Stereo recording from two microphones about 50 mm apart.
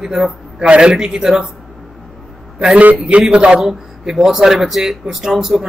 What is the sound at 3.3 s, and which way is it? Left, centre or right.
Speech, right.